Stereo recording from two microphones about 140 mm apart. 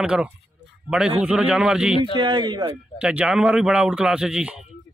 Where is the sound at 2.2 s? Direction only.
35° right (ahead or behind).